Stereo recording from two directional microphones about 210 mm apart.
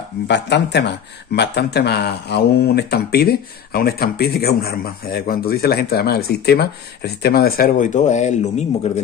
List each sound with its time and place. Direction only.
0.3 s speech: 55° left (ahead or behind); by 9.0 s 30° left (ahead or behind)